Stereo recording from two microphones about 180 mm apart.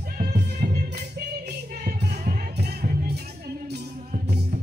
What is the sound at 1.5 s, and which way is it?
Music, 55° right (ahead or behind).